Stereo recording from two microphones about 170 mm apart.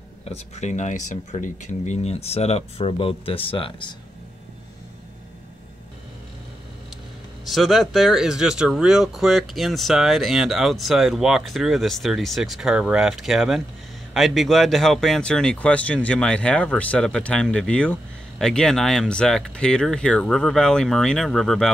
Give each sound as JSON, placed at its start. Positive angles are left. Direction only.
{"t": 0.2, "sound": "speech", "side_deg": 40}
{"t": 7.4, "sound": "speech", "side_deg": 0}